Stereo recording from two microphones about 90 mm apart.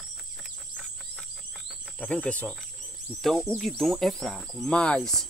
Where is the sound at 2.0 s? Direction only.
10° left (ahead or behind).